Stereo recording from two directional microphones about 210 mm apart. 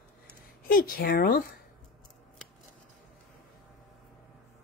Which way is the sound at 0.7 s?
45° left (ahead or behind).